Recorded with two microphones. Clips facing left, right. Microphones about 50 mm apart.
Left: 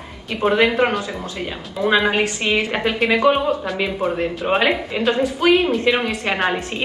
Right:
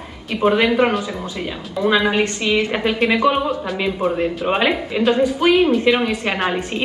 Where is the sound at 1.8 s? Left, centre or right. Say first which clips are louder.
Even; centre.